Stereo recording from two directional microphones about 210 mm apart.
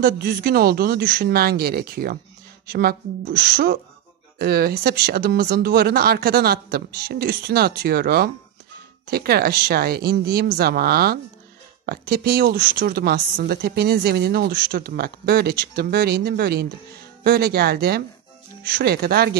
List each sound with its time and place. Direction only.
0.0 s a woman's voice: 45° right (ahead or behind)